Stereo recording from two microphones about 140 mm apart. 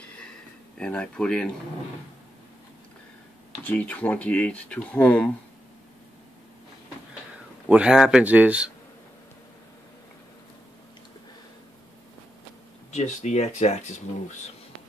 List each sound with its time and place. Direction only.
0.7 s speech: 5° left (ahead or behind)
3.6 s speech: 10° left (ahead or behind)
7.6 s a man's voice: 5° right (ahead or behind)
12.9 s speech: 55° left (ahead or behind)